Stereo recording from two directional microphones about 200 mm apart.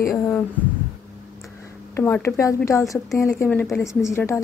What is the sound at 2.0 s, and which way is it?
A woman's voice, 10° left (ahead or behind).